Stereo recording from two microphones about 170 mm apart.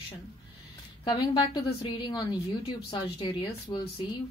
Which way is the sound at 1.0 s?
30° left (ahead or behind).